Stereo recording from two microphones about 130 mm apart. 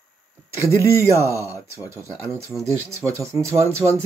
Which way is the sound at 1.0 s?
25° right (ahead or behind).